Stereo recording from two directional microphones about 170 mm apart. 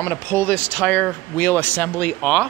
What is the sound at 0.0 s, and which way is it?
Speech, 10° left (ahead or behind).